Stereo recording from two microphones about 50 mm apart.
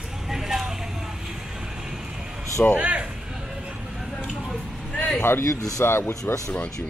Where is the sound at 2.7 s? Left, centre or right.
Right.